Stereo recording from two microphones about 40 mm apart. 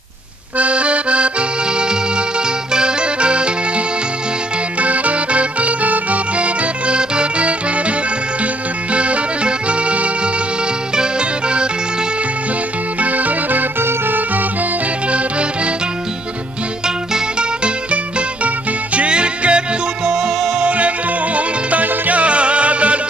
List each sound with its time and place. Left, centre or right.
0.6 s accordion: right
1.8 s music: right
4.7 s music: right
8.9 s music: right
13.0 s music: right
13.7 s music: right
15.0 s music: right
16.8 s music: right
18.9 s music: right
20.1 s music: centre
20.6 s music: right
22.2 s music: right